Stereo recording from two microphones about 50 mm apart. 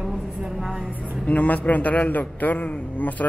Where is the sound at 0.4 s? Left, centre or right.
Centre.